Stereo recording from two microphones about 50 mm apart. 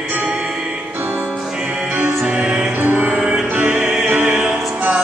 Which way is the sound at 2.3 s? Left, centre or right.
Right.